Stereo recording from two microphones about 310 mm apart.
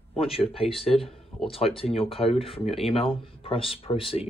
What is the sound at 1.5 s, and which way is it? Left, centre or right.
Speech, centre.